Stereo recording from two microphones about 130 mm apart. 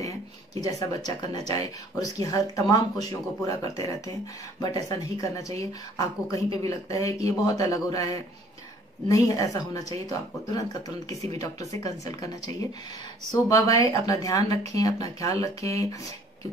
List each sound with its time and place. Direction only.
0.0 s speech: 25° left (ahead or behind)